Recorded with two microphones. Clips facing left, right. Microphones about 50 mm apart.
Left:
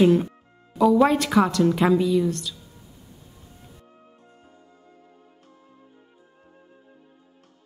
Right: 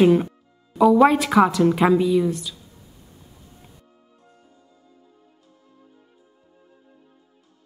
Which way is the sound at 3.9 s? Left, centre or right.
Left.